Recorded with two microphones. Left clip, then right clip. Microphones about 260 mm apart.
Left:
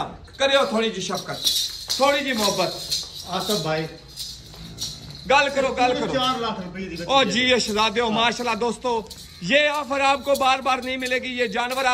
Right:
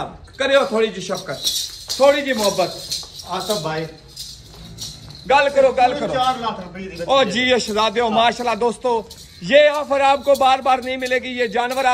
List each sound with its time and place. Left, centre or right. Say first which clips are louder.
0.4 s a man's voice: right 3 dB; centre
3.3 s speech: right 2 dB; centre
5.3 s a man's voice: right 5 dB; centre
6.1 s a man's voice: right 4 dB; centre
7.1 s a man's voice: right 3 dB; centre